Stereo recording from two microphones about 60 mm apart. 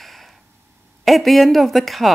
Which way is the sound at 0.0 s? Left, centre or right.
Centre.